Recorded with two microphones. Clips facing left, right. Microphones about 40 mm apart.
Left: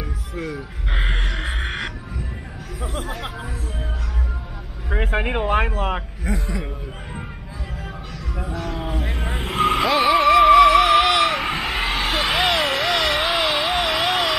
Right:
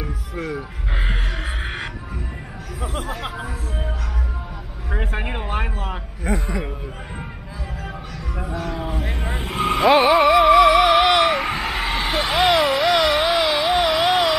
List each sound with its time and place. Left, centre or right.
0.0 s music: centre
2.8 s speech: centre
4.8 s speech: centre
6.3 s a man's voice: centre
8.4 s a man's voice: centre
8.7 s speech: centre
9.4 s vehicle: centre
10.0 s a sound: centre